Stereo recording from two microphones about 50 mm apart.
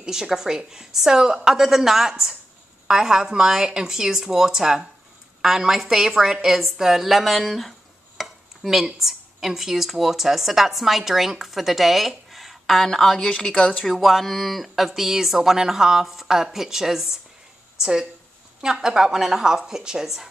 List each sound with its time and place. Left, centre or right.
0.0 s a woman's voice: centre
13.8 s speech: centre
18.6 s speech: centre